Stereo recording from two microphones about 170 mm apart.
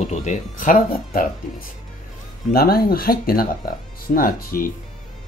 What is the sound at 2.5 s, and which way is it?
Speech, 60° left (ahead or behind).